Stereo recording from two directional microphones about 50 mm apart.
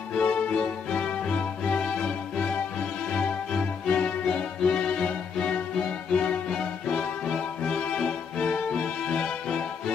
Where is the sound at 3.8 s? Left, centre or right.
Left.